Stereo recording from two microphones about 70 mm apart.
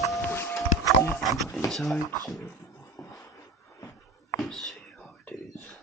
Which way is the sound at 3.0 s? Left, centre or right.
Left.